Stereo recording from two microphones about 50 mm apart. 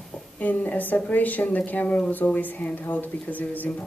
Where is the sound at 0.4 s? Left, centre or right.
Left.